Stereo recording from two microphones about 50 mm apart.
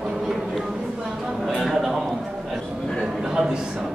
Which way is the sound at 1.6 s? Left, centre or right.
Centre.